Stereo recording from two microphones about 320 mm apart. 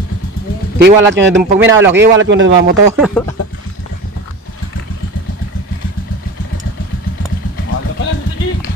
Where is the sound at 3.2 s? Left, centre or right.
Centre.